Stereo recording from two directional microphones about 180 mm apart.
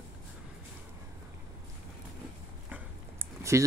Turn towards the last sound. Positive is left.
turn(degrees=-15)  # may be behind; listen again after turning